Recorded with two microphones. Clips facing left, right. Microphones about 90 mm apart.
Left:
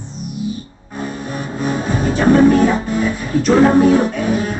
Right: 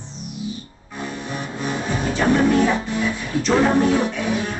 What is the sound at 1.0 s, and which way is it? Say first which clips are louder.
Music: left 4 dB; 40° left (ahead or behind).